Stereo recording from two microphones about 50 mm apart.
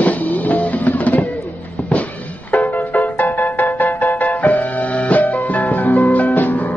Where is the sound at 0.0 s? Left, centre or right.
Left.